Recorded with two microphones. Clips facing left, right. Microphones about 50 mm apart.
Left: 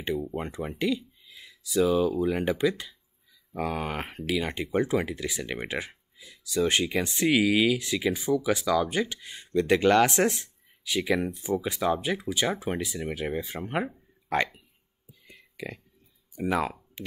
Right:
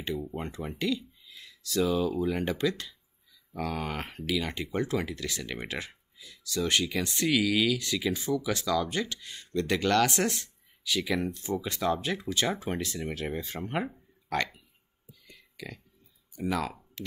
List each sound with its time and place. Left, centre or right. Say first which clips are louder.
0.0 s speech: left 3 dB; centre
14.3 s speech: left 4 dB; centre
15.2 s a sound: left 5 dB; left
16.3 s speech: left 4 dB; left